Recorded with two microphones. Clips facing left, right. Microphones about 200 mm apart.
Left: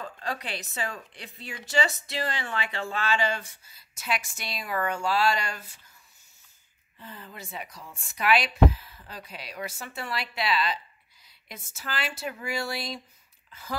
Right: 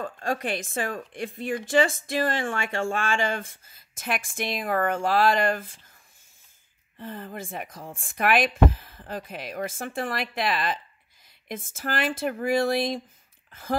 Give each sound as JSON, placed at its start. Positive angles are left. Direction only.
{"t": 0.0, "sound": "a woman's voice", "side_deg": -50}
{"t": 7.0, "sound": "a woman's voice", "side_deg": -50}